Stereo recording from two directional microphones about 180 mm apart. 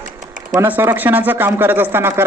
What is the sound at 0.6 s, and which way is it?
Speech, 10° right (ahead or behind).